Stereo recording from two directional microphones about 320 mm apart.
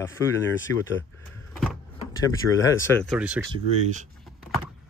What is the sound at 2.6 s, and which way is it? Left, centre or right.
Speech, centre.